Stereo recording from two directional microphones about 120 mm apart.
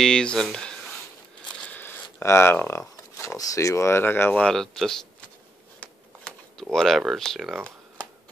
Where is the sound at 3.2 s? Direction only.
25° left (ahead or behind); by 5.0 s 5° left (ahead or behind).